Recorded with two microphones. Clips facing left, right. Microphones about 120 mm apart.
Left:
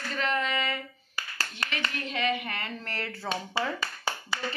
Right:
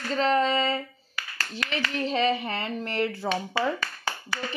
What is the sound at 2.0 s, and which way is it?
Speech, 35° right (ahead or behind).